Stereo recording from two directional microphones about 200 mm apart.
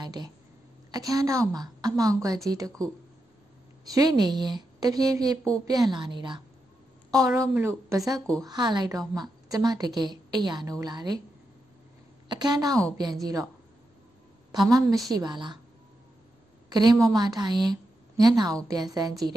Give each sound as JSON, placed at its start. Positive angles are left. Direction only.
{"t": 0.0, "sound": "a woman's voice", "side_deg": -20}
{"t": 3.9, "sound": "a woman's voice", "side_deg": -20}
{"t": 12.3, "sound": "a woman's voice", "side_deg": -20}
{"t": 14.5, "sound": "a woman's voice", "side_deg": -20}
{"t": 16.6, "sound": "a woman's voice", "side_deg": -20}